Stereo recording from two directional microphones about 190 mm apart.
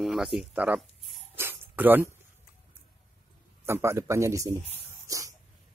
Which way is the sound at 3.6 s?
15° right (ahead or behind).